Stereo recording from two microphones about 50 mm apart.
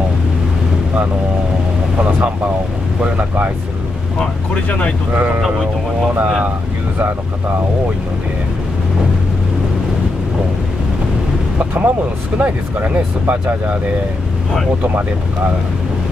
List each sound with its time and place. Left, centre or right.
4.6 s speech: left
5.1 s speech: right
11.5 s speech: right